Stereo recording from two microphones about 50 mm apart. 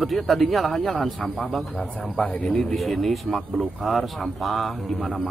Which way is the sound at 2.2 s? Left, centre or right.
Left.